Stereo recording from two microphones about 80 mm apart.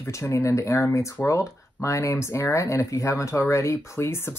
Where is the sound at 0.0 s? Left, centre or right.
Left.